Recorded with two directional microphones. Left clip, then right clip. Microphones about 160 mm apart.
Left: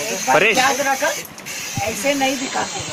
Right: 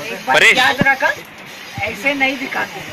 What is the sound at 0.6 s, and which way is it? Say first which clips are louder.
Speech: right 3 dB; 30° left (ahead or behind).